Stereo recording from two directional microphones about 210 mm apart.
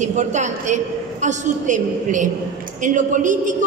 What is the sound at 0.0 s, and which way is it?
A man's voice, 35° right (ahead or behind).